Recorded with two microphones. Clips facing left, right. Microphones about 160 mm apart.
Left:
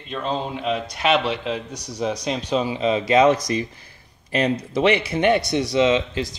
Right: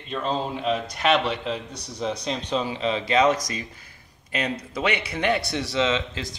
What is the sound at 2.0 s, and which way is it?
Speech, 10° left (ahead or behind).